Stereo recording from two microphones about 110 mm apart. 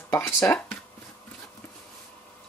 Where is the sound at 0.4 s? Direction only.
10° left (ahead or behind).